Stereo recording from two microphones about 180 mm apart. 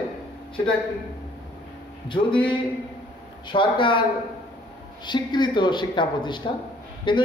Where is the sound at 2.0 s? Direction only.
30° left (ahead or behind).